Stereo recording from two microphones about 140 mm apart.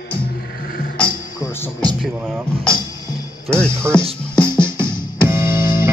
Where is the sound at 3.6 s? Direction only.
5° left (ahead or behind).